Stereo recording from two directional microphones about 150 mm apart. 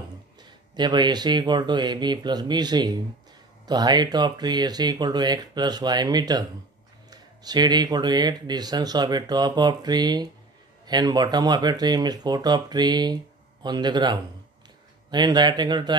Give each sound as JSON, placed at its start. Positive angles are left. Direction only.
{"t": 0.4, "sound": "speech", "side_deg": -30}